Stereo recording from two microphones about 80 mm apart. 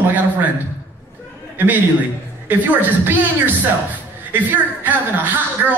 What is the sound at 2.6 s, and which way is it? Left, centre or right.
A man's voice, right.